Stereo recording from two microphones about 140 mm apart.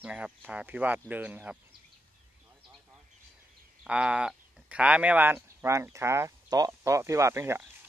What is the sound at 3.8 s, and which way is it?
Speech, 5° right (ahead or behind).